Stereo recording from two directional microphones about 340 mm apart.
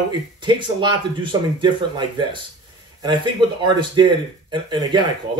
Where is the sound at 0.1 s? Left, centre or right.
Centre.